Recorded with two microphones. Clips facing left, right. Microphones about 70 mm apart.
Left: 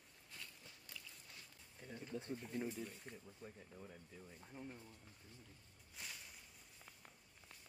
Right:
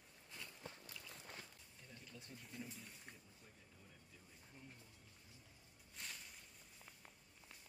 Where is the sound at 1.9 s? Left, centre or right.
Left.